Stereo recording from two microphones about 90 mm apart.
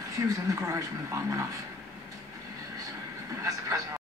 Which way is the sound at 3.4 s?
35° right (ahead or behind).